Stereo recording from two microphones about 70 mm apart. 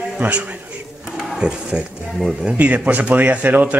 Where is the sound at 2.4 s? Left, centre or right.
Right.